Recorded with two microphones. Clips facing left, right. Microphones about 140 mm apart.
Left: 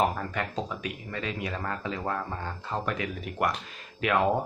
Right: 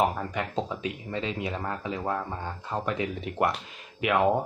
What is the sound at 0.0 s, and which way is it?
Speech, 15° right (ahead or behind).